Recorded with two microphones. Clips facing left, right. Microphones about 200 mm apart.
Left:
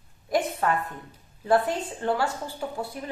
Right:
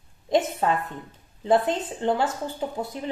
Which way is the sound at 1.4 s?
20° right (ahead or behind).